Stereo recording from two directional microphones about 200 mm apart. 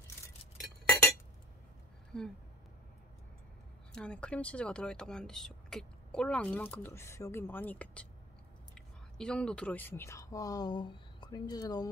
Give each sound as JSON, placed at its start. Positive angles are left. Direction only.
{"t": 2.1, "sound": "speech", "side_deg": 5}
{"t": 3.9, "sound": "speech", "side_deg": 5}